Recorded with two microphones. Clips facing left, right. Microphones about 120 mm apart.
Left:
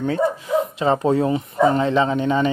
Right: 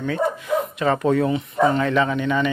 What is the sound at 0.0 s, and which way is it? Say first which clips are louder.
Speech: left 2 dB; 30° left (ahead or behind).